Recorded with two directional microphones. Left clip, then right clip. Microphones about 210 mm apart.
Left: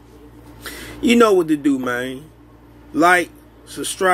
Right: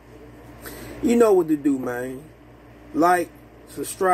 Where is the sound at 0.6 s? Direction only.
35° left (ahead or behind).